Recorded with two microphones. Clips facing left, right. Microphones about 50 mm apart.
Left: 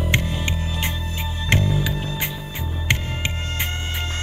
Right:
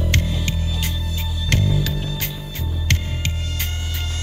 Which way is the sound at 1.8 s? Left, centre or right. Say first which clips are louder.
Even; centre.